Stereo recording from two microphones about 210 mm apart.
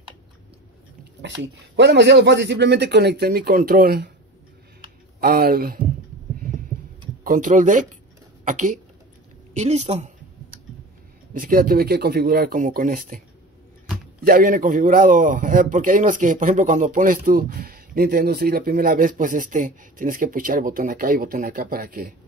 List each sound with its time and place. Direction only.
1.2 s speech: 60° right (ahead or behind)
5.2 s speech: 45° right (ahead or behind)
7.2 s a man's voice: 40° right (ahead or behind)
11.3 s speech: 40° right (ahead or behind)
14.2 s a man's voice: 45° right (ahead or behind)